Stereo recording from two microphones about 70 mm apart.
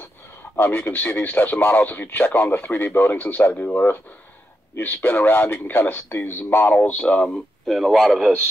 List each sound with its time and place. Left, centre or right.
0.6 s speech: left
7.2 s speech: centre